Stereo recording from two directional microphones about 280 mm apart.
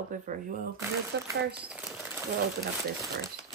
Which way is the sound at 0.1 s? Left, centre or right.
Right.